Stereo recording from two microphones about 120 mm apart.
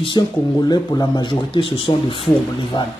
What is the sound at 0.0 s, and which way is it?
Speech, 40° left (ahead or behind).